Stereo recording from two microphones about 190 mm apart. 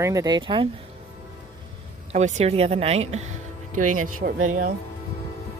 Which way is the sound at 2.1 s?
35° right (ahead or behind).